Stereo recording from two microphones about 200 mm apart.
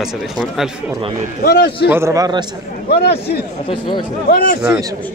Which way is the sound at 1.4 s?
55° left (ahead or behind).